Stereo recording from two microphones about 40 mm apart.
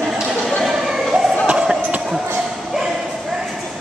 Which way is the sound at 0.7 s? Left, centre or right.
Centre.